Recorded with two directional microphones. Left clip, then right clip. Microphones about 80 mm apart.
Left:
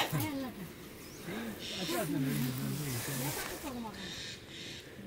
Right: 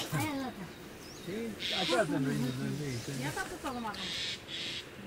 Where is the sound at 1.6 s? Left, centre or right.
Centre.